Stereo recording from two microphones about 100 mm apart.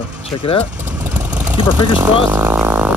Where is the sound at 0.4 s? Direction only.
65° left (ahead or behind).